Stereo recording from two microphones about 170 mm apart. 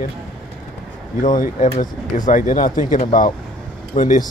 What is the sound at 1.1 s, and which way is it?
Speech, 50° left (ahead or behind).